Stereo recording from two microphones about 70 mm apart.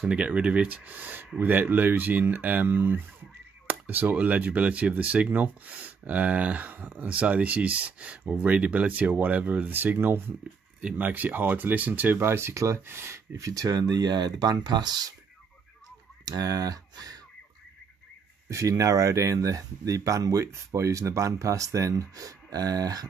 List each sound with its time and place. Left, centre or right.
0.0 s speech: centre; by 10.2 s right
10.8 s speech: right
16.3 s speech: right
18.5 s speech: right